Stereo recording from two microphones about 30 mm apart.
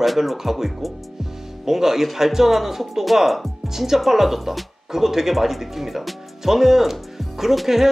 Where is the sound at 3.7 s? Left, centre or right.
Centre.